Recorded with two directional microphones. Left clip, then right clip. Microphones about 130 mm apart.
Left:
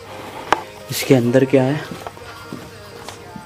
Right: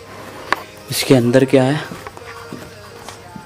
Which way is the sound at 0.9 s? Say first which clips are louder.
Right 2 dB; 10° right (ahead or behind).